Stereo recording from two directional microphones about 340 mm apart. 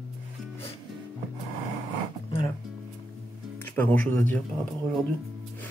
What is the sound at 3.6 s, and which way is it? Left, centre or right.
Speech, centre.